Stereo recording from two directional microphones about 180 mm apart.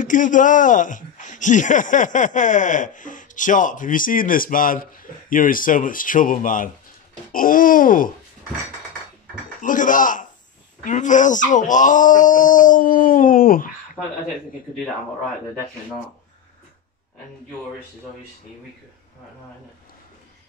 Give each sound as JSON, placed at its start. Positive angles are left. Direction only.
{"t": 0.0, "sound": "speech", "side_deg": 45}
{"t": 9.6, "sound": "speech", "side_deg": 45}